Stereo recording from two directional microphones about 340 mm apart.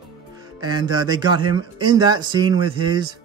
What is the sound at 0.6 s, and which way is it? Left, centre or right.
A man's voice, centre.